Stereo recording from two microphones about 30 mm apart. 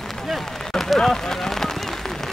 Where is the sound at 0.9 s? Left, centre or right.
Centre.